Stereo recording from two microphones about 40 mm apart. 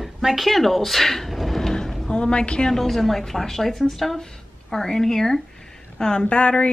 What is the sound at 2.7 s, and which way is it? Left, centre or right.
A woman's voice, centre.